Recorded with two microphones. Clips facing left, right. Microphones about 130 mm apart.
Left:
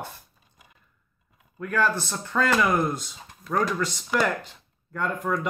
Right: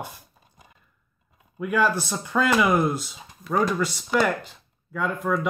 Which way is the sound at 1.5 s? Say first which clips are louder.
Right 2 dB; 10° right (ahead or behind).